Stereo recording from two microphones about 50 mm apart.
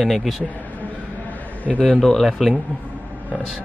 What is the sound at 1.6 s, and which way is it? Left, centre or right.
Speech, left.